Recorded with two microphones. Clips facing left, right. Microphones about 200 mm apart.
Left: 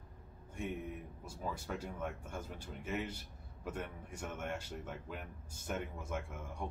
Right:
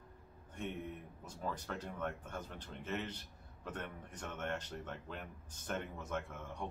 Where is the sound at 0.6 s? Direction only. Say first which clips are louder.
Left 2 dB; 10° left (ahead or behind).